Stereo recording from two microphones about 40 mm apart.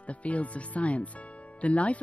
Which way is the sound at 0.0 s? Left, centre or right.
Left.